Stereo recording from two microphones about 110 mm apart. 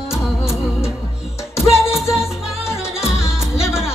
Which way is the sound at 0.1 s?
5° right (ahead or behind).